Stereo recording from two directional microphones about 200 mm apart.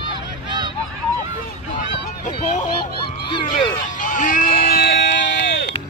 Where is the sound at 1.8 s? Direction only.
35° left (ahead or behind).